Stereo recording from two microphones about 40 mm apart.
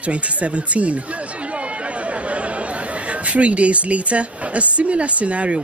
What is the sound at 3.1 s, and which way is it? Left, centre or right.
A woman's voice, right.